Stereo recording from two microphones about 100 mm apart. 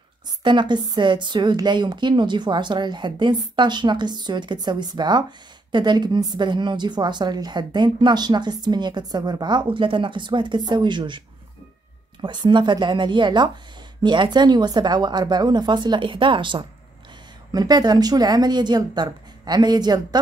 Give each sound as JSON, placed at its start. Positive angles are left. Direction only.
{"t": 0.4, "sound": "a woman's voice", "side_deg": -50}
{"t": 17.5, "sound": "a woman's voice", "side_deg": -45}